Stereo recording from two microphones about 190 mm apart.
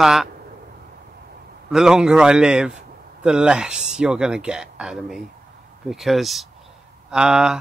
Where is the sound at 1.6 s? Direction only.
5° right (ahead or behind).